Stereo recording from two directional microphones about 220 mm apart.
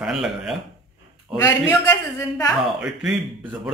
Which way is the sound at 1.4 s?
15° left (ahead or behind).